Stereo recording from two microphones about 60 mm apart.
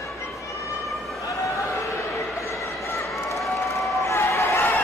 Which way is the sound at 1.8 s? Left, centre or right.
Left.